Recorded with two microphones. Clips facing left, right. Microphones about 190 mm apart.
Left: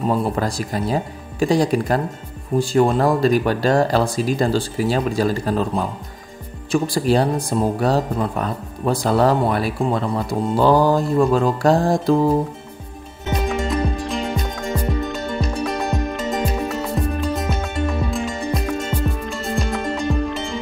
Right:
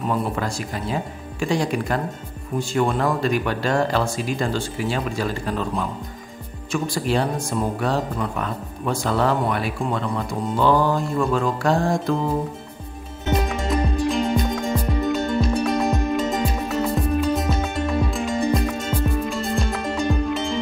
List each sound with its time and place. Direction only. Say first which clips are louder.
0.0 s speech: left 4 dB; 35° left (ahead or behind)
13.4 s music: left 4 dB; centre (ahead or behind)